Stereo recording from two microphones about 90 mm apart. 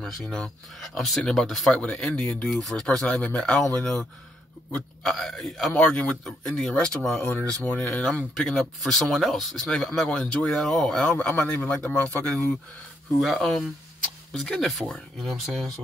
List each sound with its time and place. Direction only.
0.0 s speech: 5° left (ahead or behind)
5.8 s speech: 15° left (ahead or behind)
6.2 s speech: 5° left (ahead or behind)
8.4 s speech: 5° left (ahead or behind)
13.2 s speech: 5° left (ahead or behind)